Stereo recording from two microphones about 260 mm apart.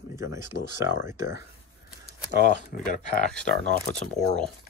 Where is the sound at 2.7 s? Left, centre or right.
Left.